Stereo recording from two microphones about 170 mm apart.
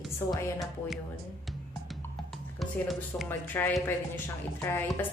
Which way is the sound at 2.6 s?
Centre (ahead or behind).